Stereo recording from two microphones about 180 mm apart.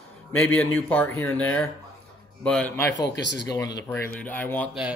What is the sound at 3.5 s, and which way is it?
Speech, 20° left (ahead or behind).